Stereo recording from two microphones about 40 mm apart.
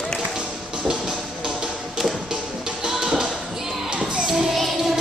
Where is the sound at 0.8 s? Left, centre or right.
Centre.